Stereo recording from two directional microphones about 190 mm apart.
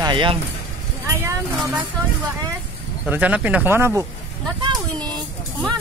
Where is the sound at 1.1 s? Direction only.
15° right (ahead or behind).